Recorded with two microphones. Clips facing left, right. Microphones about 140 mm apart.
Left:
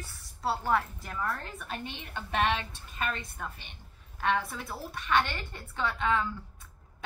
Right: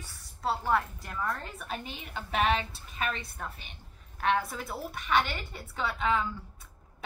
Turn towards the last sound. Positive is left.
turn(degrees=-5)  # may be behind; listen again after turning